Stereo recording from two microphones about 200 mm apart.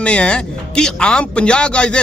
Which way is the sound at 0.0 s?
5° left (ahead or behind).